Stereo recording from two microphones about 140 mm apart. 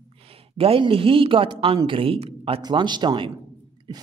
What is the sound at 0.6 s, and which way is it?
Speech, 40° right (ahead or behind).